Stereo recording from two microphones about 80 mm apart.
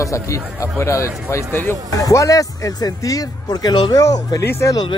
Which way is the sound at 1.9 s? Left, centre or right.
Left.